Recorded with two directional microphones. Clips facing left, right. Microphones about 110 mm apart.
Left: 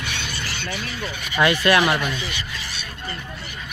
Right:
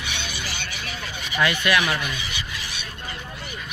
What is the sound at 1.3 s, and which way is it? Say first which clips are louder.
Speech: left 4 dB; 30° left (ahead or behind).